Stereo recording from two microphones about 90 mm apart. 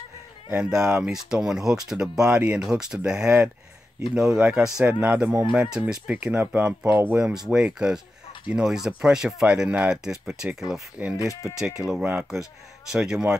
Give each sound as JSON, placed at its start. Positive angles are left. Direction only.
{"t": 0.7, "sound": "speech", "side_deg": -5}
{"t": 7.4, "sound": "speech", "side_deg": -5}